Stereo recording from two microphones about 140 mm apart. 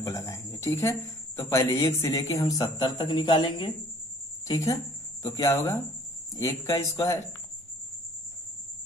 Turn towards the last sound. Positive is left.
turn(degrees=25)  # may be behind; listen again after turning